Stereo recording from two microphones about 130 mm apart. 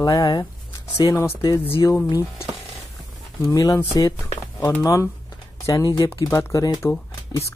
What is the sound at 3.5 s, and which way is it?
Speech, 25° left (ahead or behind).